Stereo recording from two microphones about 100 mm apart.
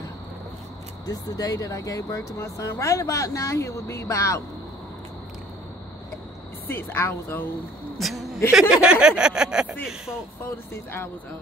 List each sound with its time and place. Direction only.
1.0 s speech: 40° left (ahead or behind)
6.7 s a woman's voice: 20° left (ahead or behind)
8.0 s speech: centre (ahead or behind)
10.4 s a woman's voice: 25° left (ahead or behind)